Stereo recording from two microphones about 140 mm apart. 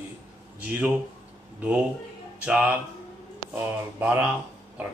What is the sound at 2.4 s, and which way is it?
A man's voice, 10° right (ahead or behind).